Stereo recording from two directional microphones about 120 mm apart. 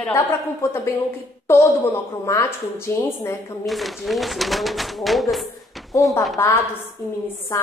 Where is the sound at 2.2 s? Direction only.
25° left (ahead or behind).